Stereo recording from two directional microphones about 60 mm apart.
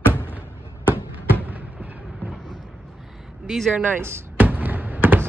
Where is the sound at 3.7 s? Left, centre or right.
Right.